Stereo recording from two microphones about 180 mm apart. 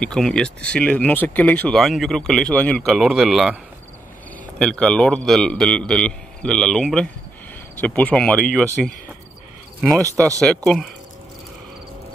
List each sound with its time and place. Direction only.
0.0 s speech: 5° left (ahead or behind)
4.6 s speech: 5° left (ahead or behind)
9.9 s speech: 15° right (ahead or behind)
10.4 s speech: 5° left (ahead or behind)